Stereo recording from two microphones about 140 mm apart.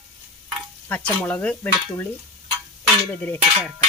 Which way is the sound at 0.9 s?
10° left (ahead or behind).